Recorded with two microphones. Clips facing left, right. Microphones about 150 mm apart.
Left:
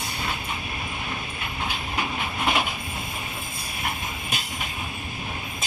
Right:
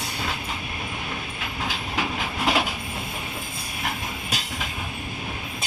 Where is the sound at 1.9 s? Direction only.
90° right.